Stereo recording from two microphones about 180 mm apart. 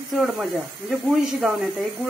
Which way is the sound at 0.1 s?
Centre (ahead or behind).